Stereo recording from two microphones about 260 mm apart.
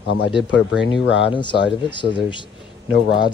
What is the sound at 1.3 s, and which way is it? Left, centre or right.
Speech, centre.